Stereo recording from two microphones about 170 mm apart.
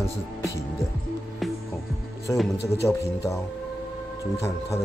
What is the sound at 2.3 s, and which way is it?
Speech, 15° left (ahead or behind).